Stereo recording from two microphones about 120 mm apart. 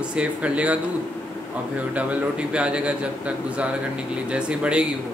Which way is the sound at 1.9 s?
10° right (ahead or behind).